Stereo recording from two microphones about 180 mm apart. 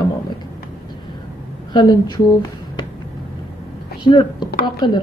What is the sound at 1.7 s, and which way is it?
Speech, 25° left (ahead or behind).